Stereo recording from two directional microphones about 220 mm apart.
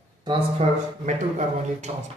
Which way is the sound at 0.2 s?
20° right (ahead or behind).